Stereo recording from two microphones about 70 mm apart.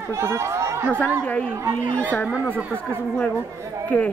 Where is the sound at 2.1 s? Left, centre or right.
Left.